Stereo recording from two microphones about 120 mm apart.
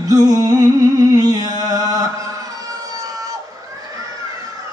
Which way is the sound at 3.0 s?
30° right (ahead or behind).